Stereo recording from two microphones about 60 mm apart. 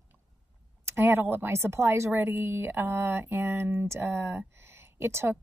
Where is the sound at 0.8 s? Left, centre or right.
Right.